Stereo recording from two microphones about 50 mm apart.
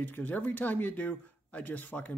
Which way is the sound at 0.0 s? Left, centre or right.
Left.